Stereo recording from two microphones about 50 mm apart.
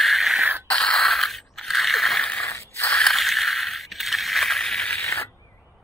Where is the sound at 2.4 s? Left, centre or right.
Left.